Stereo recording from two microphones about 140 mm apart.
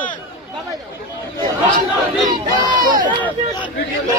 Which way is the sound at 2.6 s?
30° right (ahead or behind).